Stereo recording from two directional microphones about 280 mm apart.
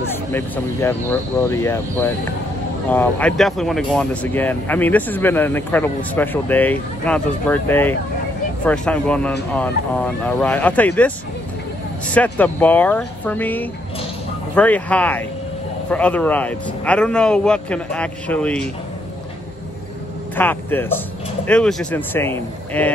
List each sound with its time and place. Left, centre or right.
0.1 s speech: centre
20.3 s speech: centre